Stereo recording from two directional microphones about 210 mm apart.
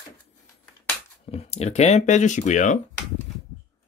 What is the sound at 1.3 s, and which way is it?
Speech, 30° left (ahead or behind).